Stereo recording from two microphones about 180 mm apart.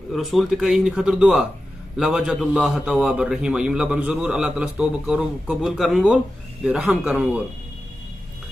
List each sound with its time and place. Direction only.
0.1 s a man's voice: centre (ahead or behind)